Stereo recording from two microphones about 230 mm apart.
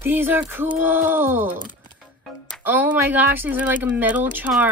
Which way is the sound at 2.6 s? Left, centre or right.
Centre.